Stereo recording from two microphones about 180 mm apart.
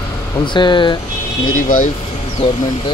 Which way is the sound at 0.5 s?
25° left (ahead or behind).